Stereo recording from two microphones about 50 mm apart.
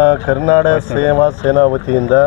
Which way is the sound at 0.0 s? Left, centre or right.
Centre.